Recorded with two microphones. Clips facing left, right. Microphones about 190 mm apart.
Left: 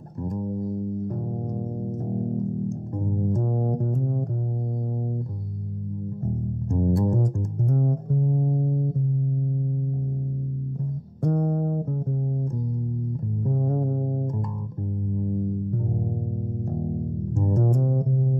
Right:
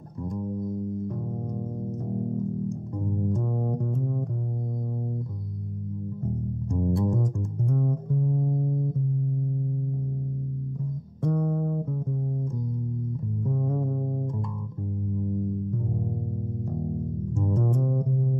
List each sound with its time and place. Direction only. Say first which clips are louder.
0.2 s music: left 2 dB; 40° left (ahead or behind)
6.8 s music: left 3 dB; 45° left (ahead or behind)
11.2 s music: left 2 dB; 50° left (ahead or behind)
13.5 s music: left 3 dB; 45° left (ahead or behind)
17.4 s music: left 3 dB; 45° left (ahead or behind)